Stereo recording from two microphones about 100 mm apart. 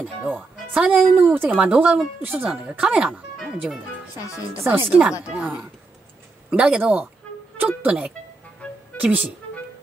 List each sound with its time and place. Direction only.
0.2 s speech: 20° right (ahead or behind); by 3.8 s centre (ahead or behind)
4.6 s speech: 20° right (ahead or behind)
8.6 s music: 10° left (ahead or behind)
8.9 s speech: 15° right (ahead or behind)